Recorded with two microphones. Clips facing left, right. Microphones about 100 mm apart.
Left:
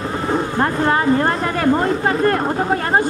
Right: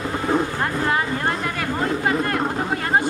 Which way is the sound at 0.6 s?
45° left (ahead or behind).